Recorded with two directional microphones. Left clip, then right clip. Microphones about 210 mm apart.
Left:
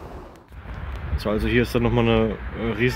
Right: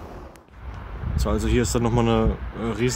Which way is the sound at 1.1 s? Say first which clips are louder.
Left 2 dB; 5° right (ahead or behind).